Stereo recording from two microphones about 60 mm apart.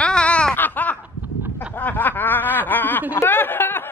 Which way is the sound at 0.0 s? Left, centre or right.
Centre.